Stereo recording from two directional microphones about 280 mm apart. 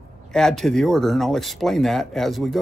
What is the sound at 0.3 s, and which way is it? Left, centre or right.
Speech, centre.